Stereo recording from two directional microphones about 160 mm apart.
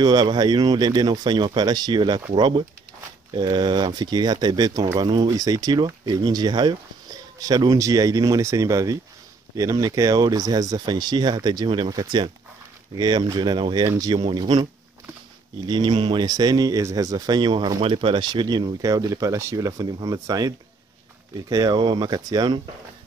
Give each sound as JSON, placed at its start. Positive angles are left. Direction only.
{"t": 0.0, "sound": "speech", "side_deg": -25}